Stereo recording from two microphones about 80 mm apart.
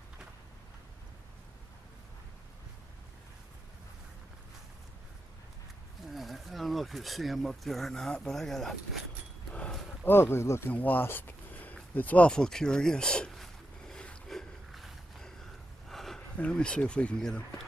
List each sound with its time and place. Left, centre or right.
6.0 s speech: centre
9.5 s a sound: centre
10.0 s speech: left
10.7 s speech: left
12.4 s a sound: centre
16.3 s speech: centre